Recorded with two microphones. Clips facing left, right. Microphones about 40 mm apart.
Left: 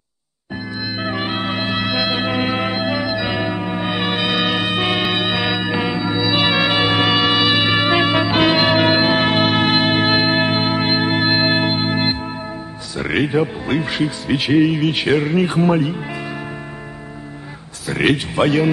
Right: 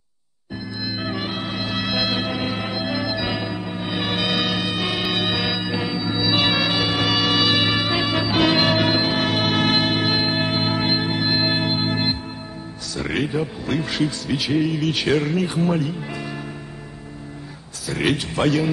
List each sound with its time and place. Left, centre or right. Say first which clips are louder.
0.8 s music: left 4 dB; left
1.8 s music: left 1 dB; centre
2.2 s organ: left 6 dB; left
3.3 s music: left 6 dB; left
3.9 s music: left 2 dB; centre
6.1 s music: left 2 dB; centre
6.6 s music: left 5 dB; left
7.8 s music: left 6 dB; left
9.8 s music: left 5 dB; left
11.0 s music: left 5 dB; left
13.3 s speech: left 5 dB; left
14.3 s speech: left 9 dB; left
15.3 s a man's voice: left 5 dB; left
18.1 s speech: left 4 dB; left